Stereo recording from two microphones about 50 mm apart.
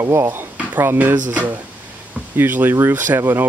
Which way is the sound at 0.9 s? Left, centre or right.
Right.